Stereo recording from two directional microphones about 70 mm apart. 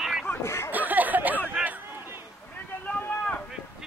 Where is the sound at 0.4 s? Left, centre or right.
Left.